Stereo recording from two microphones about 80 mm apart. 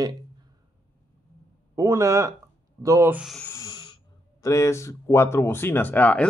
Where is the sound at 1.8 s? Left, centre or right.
Right.